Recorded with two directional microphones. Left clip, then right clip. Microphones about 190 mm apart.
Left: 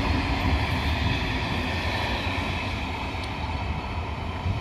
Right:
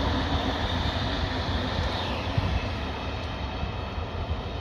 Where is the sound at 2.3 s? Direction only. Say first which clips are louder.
Left 3 dB; 10° right (ahead or behind).